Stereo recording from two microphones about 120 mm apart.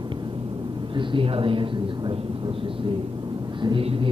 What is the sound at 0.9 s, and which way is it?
Speech, 50° right (ahead or behind).